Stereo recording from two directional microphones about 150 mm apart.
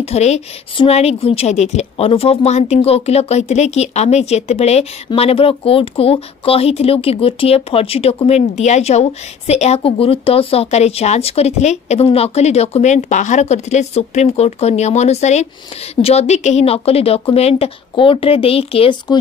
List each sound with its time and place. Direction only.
0.0 s speech: 45° left (ahead or behind)